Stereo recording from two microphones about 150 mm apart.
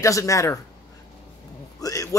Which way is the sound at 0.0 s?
20° left (ahead or behind).